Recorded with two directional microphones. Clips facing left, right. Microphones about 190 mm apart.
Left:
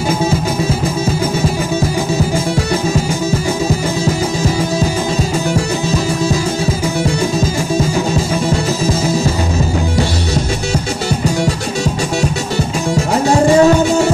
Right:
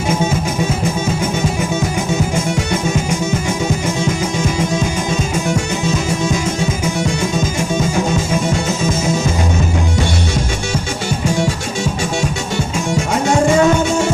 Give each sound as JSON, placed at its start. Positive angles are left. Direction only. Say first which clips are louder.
{"t": 13.3, "sound": "music", "louder": "left 3 dB", "side_deg": 35}